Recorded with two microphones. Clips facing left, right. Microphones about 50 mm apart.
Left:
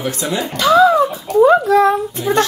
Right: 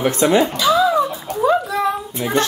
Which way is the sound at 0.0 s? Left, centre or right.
Right.